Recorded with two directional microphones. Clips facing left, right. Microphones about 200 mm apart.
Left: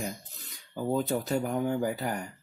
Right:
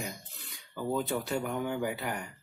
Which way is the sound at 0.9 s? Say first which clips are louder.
Left 3 dB; 40° left (ahead or behind).